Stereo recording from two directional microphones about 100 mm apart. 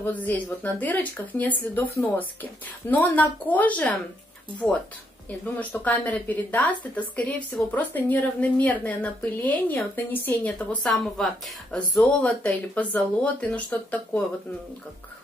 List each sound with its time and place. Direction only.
0.0 s speech: 15° left (ahead or behind)
5.6 s speech: 15° left (ahead or behind)
11.1 s speech: 5° left (ahead or behind)